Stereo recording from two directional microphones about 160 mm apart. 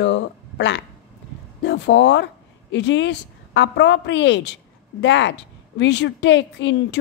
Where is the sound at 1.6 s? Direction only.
90° left.